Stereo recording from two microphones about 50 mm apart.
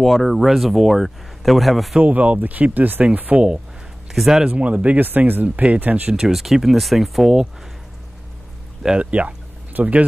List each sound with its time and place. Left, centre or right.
0.0 s speech: centre
2.0 s speech: right
4.1 s speech: centre
4.5 s speech: right
6.1 s speech: centre
8.8 s speech: right